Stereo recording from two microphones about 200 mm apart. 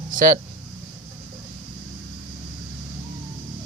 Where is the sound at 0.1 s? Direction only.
45° right (ahead or behind).